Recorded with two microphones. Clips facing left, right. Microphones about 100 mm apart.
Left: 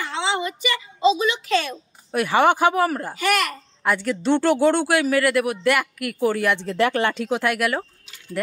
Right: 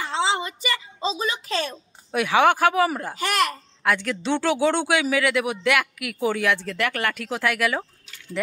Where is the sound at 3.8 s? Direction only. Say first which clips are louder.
Left 3 dB; 10° left (ahead or behind).